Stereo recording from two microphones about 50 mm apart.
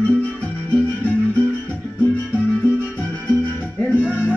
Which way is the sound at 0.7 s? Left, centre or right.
Left.